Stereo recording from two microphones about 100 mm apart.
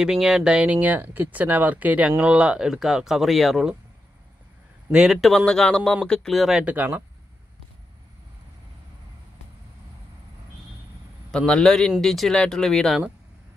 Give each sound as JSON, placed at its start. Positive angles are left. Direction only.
{"t": 0.0, "sound": "speech", "side_deg": -5}
{"t": 4.9, "sound": "speech", "side_deg": -5}
{"t": 6.6, "sound": "speech", "side_deg": -15}
{"t": 11.3, "sound": "speech", "side_deg": 5}